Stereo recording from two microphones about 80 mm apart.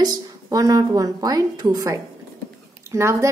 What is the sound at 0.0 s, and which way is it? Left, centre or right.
Speech, right.